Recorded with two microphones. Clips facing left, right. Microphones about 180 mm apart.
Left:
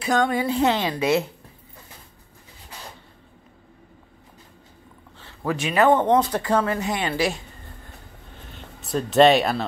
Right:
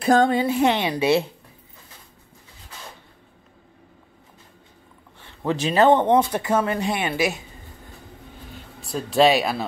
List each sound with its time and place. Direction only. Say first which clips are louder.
0.0 s a woman's voice: right 4 dB; 30° right (ahead or behind)
5.2 s a sound: right 2 dB; 20° right (ahead or behind)
5.6 s speech: right 2 dB; 35° right (ahead or behind)
5.9 s a woman's voice: right 1 dB; 15° right (ahead or behind)
8.8 s speech: left 2 dB; centre (ahead or behind)